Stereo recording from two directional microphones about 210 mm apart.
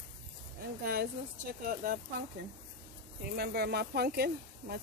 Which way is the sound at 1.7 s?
45° right (ahead or behind).